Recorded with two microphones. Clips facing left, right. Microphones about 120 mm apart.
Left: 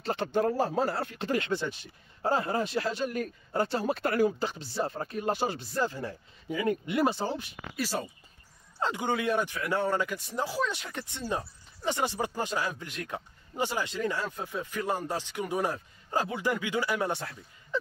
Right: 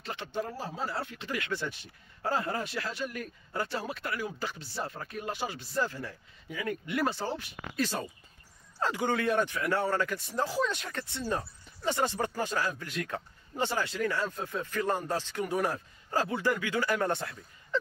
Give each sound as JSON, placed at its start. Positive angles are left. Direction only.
{"t": 0.0, "sound": "speech", "side_deg": 40}
{"t": 0.4, "sound": "speech", "side_deg": 50}
{"t": 1.1, "sound": "speech", "side_deg": 35}
{"t": 1.5, "sound": "speech", "side_deg": 20}
{"t": 3.8, "sound": "speech", "side_deg": 45}
{"t": 4.4, "sound": "speech", "side_deg": 25}
{"t": 5.6, "sound": "speech", "side_deg": 20}